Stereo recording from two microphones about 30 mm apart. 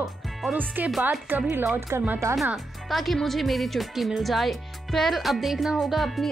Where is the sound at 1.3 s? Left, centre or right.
Right.